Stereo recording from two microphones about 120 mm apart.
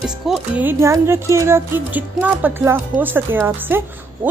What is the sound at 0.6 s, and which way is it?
Speech, 20° right (ahead or behind).